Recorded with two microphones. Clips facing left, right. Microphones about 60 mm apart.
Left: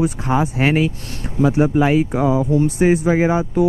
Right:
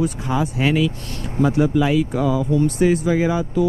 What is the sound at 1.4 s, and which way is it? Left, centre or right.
Speech, right.